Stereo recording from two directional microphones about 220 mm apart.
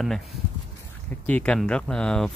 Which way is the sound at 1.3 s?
5° left (ahead or behind).